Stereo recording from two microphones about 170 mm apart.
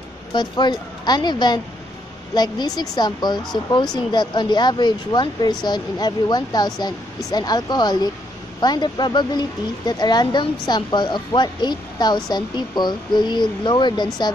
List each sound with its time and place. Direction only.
0.3 s speech: 25° left (ahead or behind)